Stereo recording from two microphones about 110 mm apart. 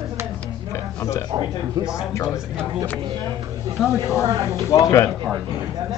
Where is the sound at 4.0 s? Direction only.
25° left (ahead or behind).